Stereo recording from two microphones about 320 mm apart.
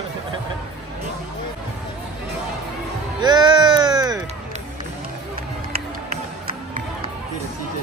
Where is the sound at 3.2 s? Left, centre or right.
Centre.